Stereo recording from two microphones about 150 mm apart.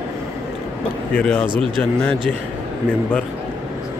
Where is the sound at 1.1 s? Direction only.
10° left (ahead or behind).